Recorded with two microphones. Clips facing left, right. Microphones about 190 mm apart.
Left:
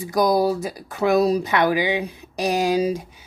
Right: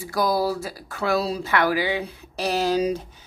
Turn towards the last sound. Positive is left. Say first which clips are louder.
# left 2 dB
turn(degrees=10)  # may be behind; listen again after turning